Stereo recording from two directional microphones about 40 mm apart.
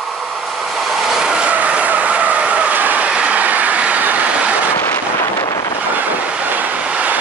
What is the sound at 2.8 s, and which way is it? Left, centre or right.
Train, right.